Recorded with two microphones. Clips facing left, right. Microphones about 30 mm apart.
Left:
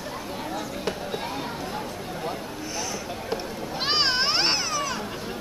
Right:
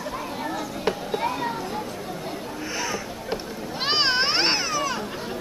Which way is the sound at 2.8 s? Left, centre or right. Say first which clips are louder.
Right 1 dB; centre.